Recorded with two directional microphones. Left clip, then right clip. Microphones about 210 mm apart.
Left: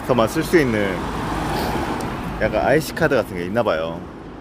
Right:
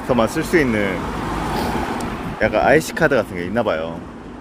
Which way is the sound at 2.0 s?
20° right (ahead or behind).